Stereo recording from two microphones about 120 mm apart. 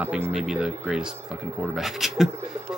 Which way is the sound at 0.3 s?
5° right (ahead or behind).